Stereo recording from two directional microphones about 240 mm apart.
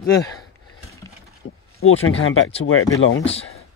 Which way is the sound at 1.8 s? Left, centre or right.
Left.